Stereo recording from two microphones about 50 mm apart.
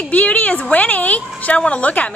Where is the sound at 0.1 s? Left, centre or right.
Left.